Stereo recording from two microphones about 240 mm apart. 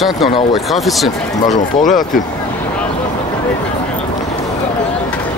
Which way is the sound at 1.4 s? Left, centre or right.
Left.